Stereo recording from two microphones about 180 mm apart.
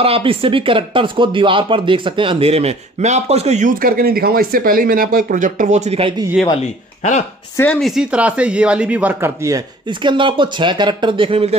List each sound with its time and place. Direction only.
0.0 s speech: 30° right (ahead or behind)
6.5 s speech: 40° left (ahead or behind)
7.5 s speech: 10° left (ahead or behind); by 11.5 s 30° right (ahead or behind)